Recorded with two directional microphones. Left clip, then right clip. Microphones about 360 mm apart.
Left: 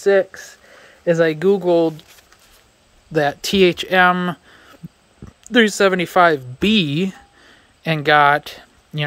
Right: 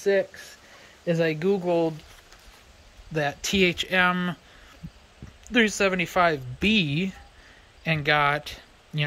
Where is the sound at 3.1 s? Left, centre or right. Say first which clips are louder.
Left 8 dB; centre.